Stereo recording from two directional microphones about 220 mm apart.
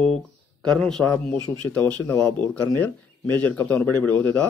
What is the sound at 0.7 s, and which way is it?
A man's voice, centre (ahead or behind).